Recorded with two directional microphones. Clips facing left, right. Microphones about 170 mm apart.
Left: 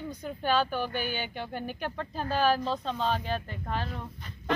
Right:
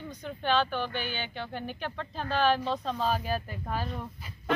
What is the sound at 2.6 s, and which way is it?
Speech, 5° right (ahead or behind).